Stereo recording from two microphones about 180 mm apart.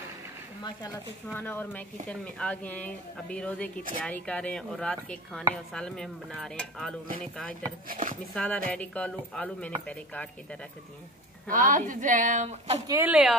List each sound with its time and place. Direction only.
1.2 s speech: 10° left (ahead or behind)
7.9 s speech: 45° right (ahead or behind)
8.4 s speech: 5° left (ahead or behind)
11.4 s speech: 45° right (ahead or behind)
12.8 s speech: 20° right (ahead or behind)
13.1 s speech: 5° right (ahead or behind)